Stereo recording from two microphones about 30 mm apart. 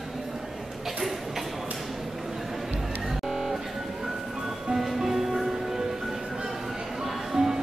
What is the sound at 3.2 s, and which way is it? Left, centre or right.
Music, centre.